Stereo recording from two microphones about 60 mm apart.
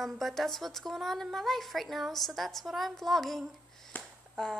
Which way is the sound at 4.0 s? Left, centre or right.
Centre.